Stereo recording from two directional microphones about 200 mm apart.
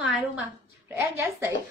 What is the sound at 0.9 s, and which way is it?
Speech, 10° right (ahead or behind).